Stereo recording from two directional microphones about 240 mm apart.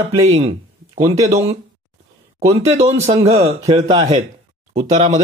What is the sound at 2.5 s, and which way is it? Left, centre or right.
Speech, right.